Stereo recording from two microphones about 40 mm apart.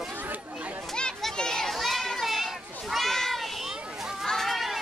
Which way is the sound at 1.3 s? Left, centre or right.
Centre.